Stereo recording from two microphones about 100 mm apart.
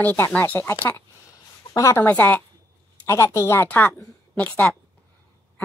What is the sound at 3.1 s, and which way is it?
A woman's voice, 30° left (ahead or behind).